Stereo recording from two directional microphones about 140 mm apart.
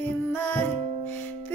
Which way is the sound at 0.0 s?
15° left (ahead or behind).